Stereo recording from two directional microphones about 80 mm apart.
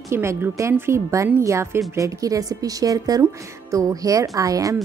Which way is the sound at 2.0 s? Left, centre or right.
Right.